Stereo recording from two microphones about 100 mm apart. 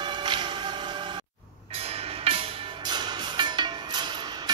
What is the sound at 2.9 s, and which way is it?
Music, 50° right (ahead or behind).